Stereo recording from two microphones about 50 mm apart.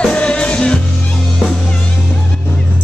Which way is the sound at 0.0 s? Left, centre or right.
Centre.